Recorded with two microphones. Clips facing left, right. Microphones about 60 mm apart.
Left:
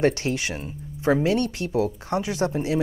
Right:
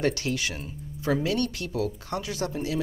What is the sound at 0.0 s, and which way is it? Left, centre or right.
Speech, left.